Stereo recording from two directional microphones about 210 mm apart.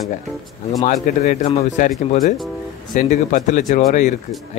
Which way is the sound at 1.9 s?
40° left (ahead or behind).